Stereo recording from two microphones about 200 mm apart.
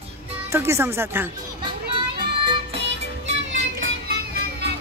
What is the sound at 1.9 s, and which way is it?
Music, 25° right (ahead or behind).